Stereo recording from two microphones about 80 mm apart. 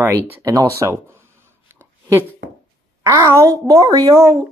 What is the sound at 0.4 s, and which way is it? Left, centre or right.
Speech, right.